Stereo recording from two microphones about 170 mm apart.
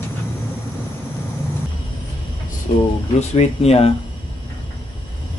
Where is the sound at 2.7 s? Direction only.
40° left (ahead or behind).